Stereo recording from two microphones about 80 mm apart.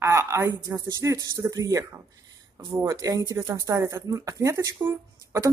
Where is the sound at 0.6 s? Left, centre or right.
Right.